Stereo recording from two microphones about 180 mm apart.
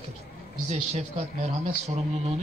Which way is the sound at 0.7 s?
40° right (ahead or behind).